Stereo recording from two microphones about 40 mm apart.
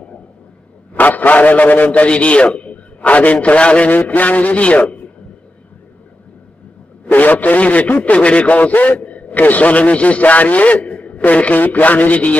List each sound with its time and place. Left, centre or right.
0.9 s a man's voice: left
4.1 s a man's voice: left
7.1 s a man's voice: left